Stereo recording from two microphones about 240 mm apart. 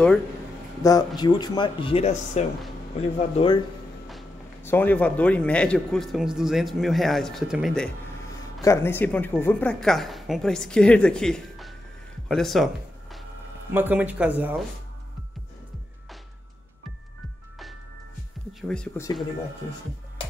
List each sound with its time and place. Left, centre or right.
0.8 s speech: centre
4.6 s speech: centre
13.7 s speech: centre
18.6 s speech: centre